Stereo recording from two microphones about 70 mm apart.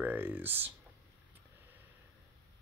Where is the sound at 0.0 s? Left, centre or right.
Right.